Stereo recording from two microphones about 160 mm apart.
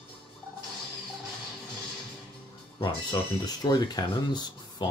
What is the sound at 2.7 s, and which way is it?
Speech, 30° left (ahead or behind).